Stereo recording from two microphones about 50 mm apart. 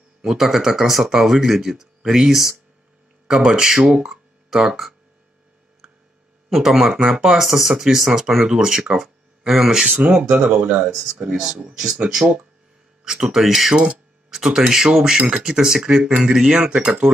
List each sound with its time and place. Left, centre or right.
0.3 s speech: centre
6.5 s speech: centre
7.1 s speech: centre
7.3 s speech: centre
10.5 s speech: right
11.2 s speech: centre
11.5 s speech: right